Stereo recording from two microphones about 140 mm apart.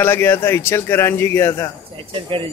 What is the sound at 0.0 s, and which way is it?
A man's voice, 15° left (ahead or behind).